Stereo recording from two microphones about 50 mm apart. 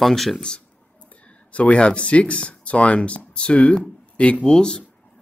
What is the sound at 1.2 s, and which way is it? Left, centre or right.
Speech, left.